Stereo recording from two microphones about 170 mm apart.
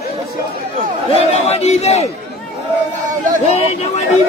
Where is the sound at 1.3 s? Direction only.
40° left (ahead or behind).